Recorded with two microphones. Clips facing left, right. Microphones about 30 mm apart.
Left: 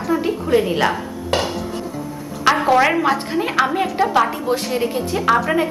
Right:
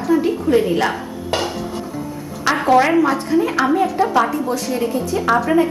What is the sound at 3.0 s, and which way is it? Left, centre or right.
A woman's voice, left.